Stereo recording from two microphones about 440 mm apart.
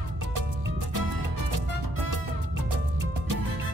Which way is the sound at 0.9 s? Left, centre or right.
Right.